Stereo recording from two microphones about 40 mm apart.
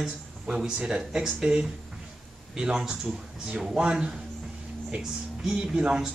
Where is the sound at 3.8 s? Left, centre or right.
Right.